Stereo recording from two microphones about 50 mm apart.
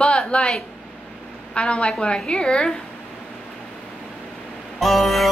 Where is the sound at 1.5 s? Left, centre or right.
Left.